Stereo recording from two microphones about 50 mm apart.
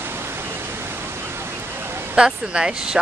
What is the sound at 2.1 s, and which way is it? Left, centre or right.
Speech, centre.